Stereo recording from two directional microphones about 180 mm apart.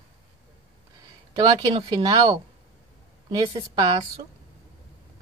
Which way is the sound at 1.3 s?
25° right (ahead or behind).